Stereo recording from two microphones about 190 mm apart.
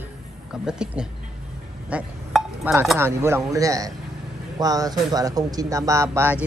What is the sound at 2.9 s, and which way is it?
A man's voice, 10° right (ahead or behind).